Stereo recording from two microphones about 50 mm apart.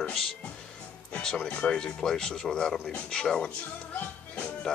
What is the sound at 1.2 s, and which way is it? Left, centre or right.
Speech, centre.